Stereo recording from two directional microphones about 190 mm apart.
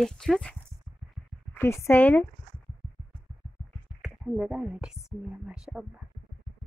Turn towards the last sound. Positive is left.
turn(degrees=-5)  # may be behind; listen again after turning